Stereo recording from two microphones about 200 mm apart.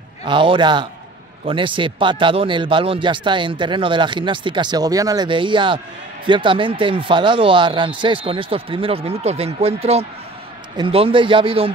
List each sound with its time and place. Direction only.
0.2 s speech: 25° right (ahead or behind)